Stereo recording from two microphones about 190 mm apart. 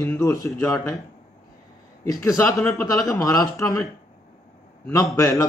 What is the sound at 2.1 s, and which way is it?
Speech, 15° left (ahead or behind).